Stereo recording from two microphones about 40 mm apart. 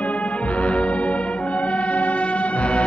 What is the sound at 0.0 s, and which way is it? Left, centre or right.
Music, left.